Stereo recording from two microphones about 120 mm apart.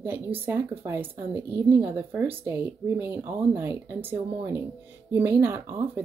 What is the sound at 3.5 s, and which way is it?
Speech, 20° right (ahead or behind).